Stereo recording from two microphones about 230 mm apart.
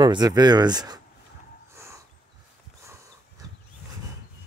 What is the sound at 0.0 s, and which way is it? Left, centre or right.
Speech, centre.